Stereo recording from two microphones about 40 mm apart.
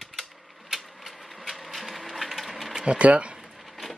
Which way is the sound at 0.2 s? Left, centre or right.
Centre.